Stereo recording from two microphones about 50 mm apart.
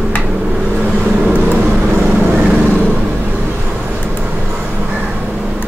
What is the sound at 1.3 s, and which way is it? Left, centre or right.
Vehicle, right.